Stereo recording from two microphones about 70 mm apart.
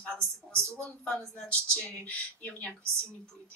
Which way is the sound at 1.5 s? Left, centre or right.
Centre.